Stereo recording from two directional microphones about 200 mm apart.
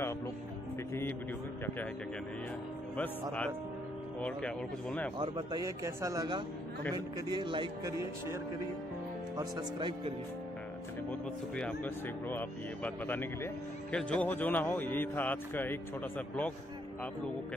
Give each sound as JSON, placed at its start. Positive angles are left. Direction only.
{"t": 3.0, "sound": "a man's voice", "side_deg": 5}
{"t": 5.2, "sound": "speech", "side_deg": -20}
{"t": 9.4, "sound": "speech", "side_deg": -20}
{"t": 11.1, "sound": "a man's voice", "side_deg": 5}